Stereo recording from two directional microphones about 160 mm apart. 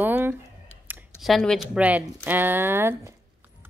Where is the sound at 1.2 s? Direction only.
Centre (ahead or behind).